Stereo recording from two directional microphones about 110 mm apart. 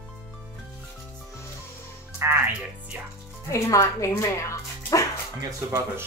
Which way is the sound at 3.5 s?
30° left (ahead or behind).